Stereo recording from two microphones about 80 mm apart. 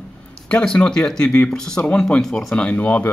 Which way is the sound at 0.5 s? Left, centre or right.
Centre.